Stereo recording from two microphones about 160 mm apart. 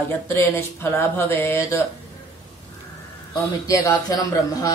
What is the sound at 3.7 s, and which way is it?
Speech, 20° left (ahead or behind).